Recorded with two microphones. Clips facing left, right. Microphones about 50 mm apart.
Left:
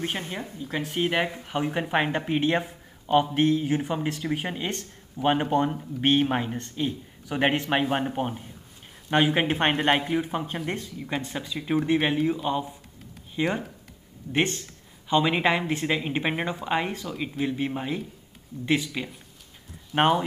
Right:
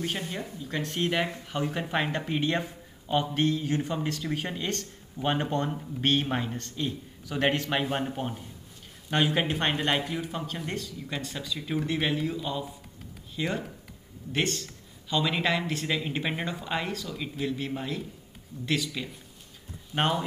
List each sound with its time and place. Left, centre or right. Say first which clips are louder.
0.0 s speech: left 1 dB; left